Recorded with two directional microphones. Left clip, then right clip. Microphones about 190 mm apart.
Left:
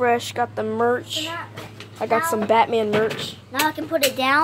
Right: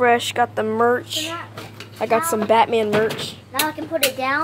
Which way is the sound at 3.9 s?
50° left (ahead or behind).